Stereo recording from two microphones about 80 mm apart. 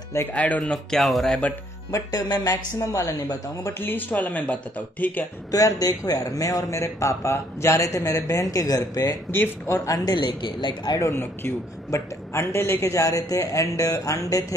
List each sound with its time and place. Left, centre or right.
0.3 s speech: centre
0.6 s speech: centre
1.9 s speech: left
2.8 s speech: left
3.8 s speech: left
5.5 s speech: left
9.3 s speech: left
9.8 s speech: left
11.0 s a woman's voice: left